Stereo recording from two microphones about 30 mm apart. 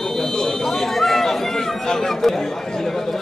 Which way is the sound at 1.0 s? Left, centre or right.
Centre.